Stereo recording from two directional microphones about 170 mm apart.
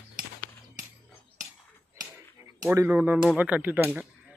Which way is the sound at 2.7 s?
10° right (ahead or behind).